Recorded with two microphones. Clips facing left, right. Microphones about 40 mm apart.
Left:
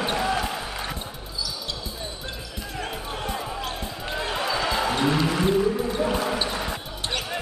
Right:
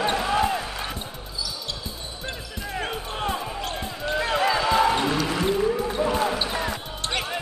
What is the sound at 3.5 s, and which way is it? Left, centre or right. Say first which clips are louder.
Basketball bounce: even; centre.